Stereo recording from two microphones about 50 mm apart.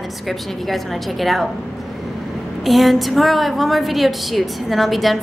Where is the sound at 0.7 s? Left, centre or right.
Centre.